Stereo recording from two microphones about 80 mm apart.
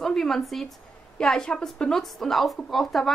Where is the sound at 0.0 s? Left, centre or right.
Centre.